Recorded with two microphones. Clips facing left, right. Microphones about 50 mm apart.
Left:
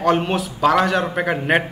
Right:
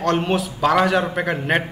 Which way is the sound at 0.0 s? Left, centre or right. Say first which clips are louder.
Left 1 dB; centre.